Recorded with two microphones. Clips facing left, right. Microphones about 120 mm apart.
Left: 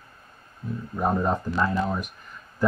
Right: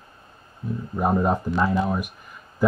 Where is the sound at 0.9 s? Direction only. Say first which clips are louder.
Right 3 dB; 10° right (ahead or behind).